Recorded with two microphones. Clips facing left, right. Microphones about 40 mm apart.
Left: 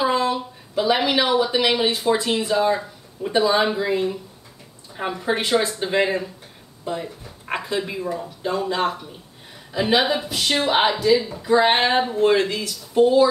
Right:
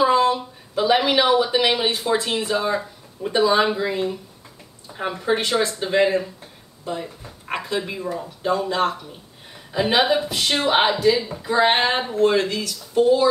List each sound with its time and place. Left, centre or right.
0.0 s speech: centre
5.2 s speech: centre
9.7 s speech: centre
12.1 s speech: centre